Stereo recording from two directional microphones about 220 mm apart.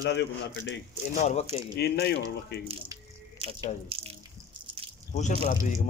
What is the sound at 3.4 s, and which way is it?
Drip, 25° right (ahead or behind).